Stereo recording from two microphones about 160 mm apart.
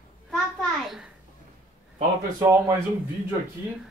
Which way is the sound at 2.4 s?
15° right (ahead or behind).